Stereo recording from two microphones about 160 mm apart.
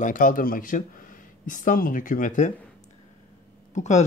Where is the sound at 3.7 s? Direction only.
50° left (ahead or behind).